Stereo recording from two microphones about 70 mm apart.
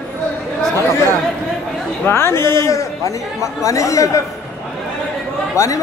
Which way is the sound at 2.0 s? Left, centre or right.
Left.